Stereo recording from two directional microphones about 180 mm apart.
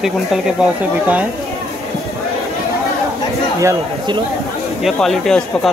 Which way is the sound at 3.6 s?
20° right (ahead or behind).